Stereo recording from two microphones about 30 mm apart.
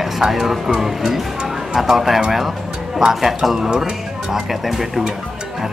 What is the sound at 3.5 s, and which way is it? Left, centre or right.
Speech, right.